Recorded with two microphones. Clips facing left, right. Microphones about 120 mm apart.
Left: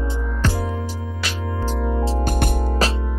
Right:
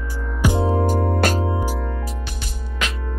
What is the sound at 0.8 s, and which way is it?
Music, 50° right (ahead or behind).